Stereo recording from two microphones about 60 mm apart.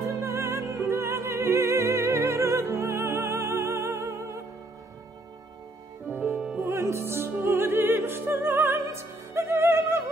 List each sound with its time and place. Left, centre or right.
0.0 s music: right
6.1 s music: right
6.6 s music: right
8.9 s opera: right